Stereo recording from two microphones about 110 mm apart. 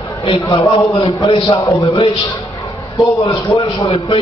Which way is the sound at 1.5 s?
35° left (ahead or behind).